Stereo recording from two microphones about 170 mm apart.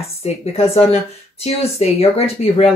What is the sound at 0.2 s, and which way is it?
Speech, 35° left (ahead or behind).